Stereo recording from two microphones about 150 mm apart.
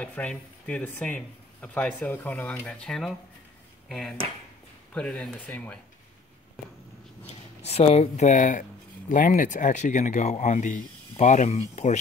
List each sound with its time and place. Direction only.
0.0 s speech: 10° left (ahead or behind)
4.9 s speech: 5° left (ahead or behind)
7.6 s speech: 45° left (ahead or behind)